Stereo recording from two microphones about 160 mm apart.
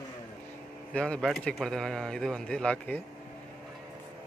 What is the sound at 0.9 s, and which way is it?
Speech, 5° left (ahead or behind).